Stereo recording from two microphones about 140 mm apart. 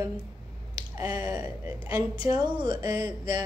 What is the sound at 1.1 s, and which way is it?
A woman's voice, 25° right (ahead or behind).